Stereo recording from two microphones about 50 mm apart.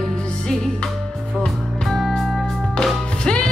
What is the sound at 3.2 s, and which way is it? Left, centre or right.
Music, centre.